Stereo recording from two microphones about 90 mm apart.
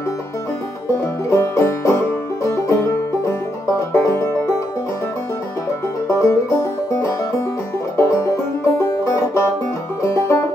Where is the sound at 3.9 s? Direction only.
35° left (ahead or behind).